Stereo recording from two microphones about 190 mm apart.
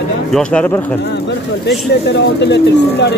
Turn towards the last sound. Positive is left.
turn(degrees=65)  # may be behind; listen again after turning